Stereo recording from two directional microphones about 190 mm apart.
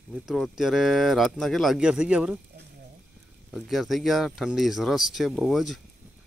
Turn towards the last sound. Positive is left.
turn(degrees=0)  # may be behind; listen again after turning